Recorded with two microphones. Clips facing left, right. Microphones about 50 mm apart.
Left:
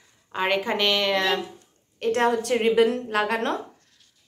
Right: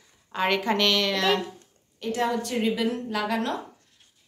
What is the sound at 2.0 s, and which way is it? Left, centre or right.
A woman's voice, left.